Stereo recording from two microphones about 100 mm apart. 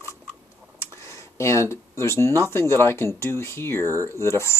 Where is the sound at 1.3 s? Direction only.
30° left (ahead or behind).